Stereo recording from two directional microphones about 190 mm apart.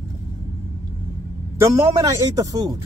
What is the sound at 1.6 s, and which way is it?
Speech, 15° right (ahead or behind).